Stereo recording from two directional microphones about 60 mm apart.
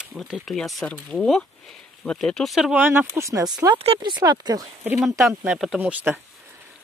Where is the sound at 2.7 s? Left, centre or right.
Right.